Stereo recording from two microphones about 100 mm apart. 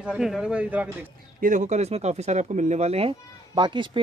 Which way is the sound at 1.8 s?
90° right.